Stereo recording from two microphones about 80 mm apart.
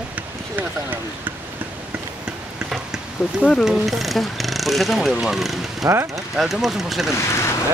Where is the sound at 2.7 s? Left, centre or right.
Centre.